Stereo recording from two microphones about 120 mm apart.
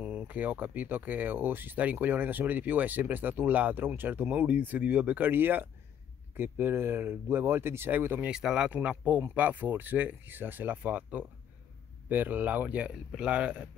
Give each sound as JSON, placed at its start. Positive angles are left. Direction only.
{"t": 0.0, "sound": "speech", "side_deg": -15}
{"t": 8.3, "sound": "speech", "side_deg": -5}